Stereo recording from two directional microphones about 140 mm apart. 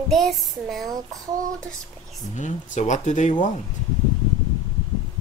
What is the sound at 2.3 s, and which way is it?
Speech, 60° left (ahead or behind).